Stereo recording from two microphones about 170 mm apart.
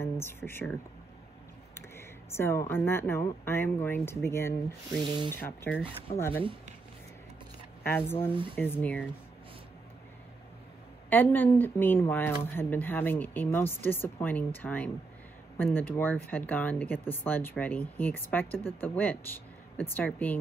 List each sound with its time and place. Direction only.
0.0 s speech: 15° left (ahead or behind)
1.8 s speech: 15° left (ahead or behind)
5.0 s speech: 25° right (ahead or behind)
5.3 s speech: 15° left (ahead or behind)
7.8 s speech: 15° left (ahead or behind)
11.1 s speech: 10° left (ahead or behind)